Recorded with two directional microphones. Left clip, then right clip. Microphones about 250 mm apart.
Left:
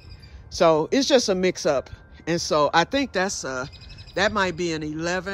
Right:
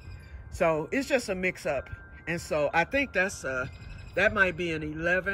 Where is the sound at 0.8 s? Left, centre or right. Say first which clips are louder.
Left 9 dB; left.